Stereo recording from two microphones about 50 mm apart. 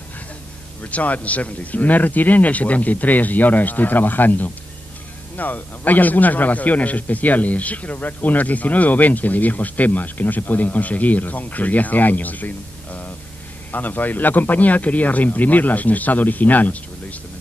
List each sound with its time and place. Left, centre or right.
0.8 s a man's voice: left